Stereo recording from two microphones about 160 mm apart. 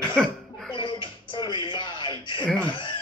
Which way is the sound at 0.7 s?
30° left (ahead or behind).